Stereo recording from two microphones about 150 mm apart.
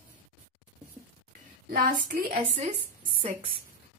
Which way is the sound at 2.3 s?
45° right (ahead or behind).